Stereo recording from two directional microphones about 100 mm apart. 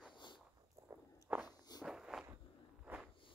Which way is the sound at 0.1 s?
50° left (ahead or behind).